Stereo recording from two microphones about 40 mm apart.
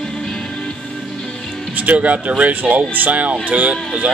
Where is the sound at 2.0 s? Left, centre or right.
Right.